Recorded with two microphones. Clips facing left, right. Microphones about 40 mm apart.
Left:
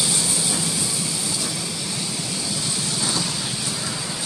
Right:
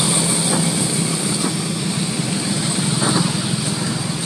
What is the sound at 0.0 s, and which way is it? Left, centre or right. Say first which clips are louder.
Train: right 5 dB; right.